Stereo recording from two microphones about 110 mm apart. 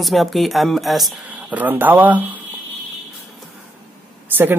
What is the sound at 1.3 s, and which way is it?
Speech, 15° right (ahead or behind).